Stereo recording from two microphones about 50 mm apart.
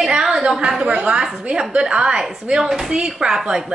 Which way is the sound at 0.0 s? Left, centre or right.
Centre.